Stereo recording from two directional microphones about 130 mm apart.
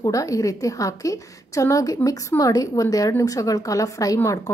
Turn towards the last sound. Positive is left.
turn(degrees=25)  # may be behind; listen again after turning